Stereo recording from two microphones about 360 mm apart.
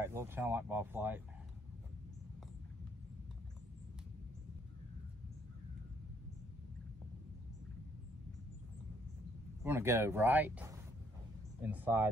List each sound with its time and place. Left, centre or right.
0.0 s speech: centre
9.6 s speech: centre